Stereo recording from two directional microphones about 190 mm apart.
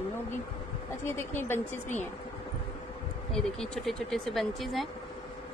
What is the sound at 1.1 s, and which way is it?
Speech, 10° left (ahead or behind).